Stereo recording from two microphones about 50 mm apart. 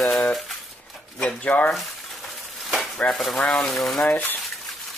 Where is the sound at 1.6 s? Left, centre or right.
Centre.